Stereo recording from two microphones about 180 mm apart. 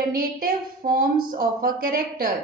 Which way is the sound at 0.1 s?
55° right (ahead or behind).